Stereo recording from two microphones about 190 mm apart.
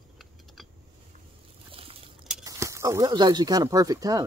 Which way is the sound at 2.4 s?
15° right (ahead or behind).